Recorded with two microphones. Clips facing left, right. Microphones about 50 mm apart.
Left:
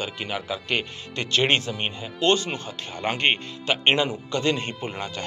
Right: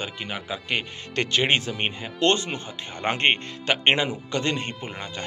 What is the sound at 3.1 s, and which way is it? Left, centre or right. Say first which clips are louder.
Speech: right 1 dB; right.